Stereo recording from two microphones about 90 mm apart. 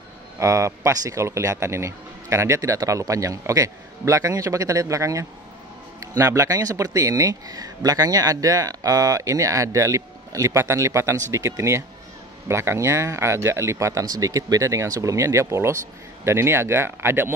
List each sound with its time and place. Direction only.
0.4 s speech: 35° right (ahead or behind)